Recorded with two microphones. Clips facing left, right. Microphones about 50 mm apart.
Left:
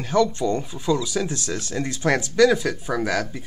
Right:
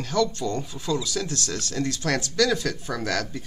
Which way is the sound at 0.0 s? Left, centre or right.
Centre.